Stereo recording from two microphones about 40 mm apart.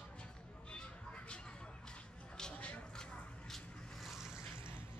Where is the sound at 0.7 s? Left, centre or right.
Left.